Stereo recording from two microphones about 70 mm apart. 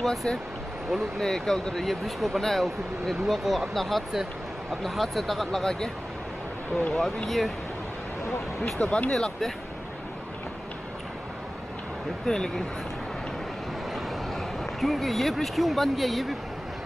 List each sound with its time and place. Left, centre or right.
0.0 s speech: centre
6.9 s speech: centre
8.8 s speech: centre
9.1 s speech: centre
12.3 s speech: centre
14.8 s speech: centre